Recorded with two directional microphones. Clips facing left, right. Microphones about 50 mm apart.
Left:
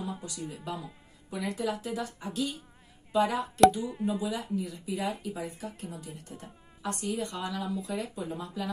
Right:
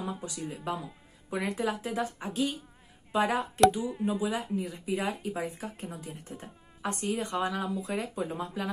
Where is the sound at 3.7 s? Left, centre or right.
Centre.